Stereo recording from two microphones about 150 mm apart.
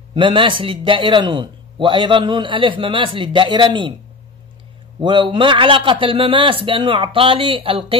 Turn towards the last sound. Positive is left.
turn(degrees=-40)  # may be behind; listen again after turning